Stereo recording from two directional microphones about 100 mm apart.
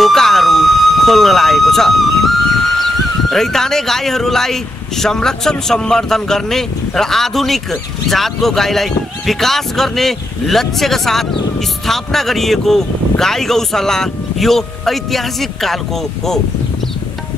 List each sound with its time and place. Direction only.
0.0 s speech: 5° left (ahead or behind)